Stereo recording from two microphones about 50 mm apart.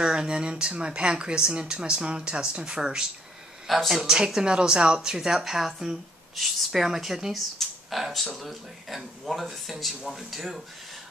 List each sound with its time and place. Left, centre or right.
0.0 s a woman's voice: centre
3.6 s speech: centre
4.0 s a woman's voice: centre
7.5 s a sound: centre
8.4 s speech: centre